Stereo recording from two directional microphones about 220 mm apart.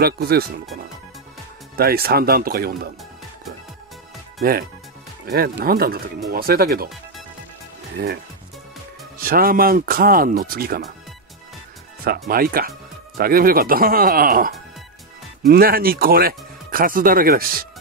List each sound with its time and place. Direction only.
0.0 s speech: 45° right (ahead or behind)
1.8 s speech: 45° right (ahead or behind)
4.4 s speech: 45° right (ahead or behind)
8.0 s speech: 45° right (ahead or behind)
9.2 s speech: 40° right (ahead or behind)
12.0 s speech: 45° right (ahead or behind)